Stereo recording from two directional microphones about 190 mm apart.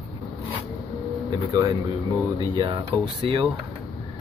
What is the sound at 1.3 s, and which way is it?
Speech, 15° right (ahead or behind).